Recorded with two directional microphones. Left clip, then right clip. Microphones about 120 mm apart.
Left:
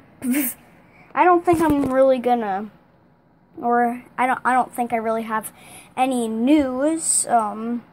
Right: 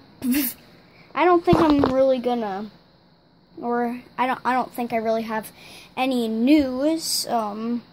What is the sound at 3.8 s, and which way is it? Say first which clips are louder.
Speech: left 4 dB; 5° right (ahead or behind).